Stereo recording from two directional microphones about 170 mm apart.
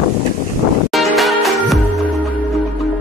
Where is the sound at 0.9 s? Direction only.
Centre (ahead or behind).